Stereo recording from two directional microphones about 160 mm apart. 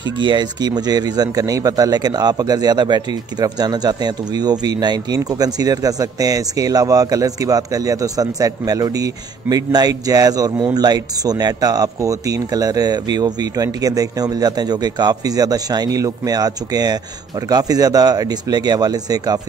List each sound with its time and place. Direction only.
0.2 s speech: 30° right (ahead or behind)